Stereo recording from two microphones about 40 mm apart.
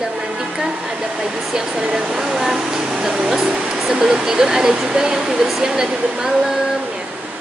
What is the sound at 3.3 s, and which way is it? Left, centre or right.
Speech, right.